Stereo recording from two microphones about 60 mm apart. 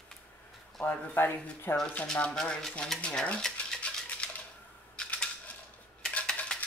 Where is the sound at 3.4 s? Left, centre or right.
Centre.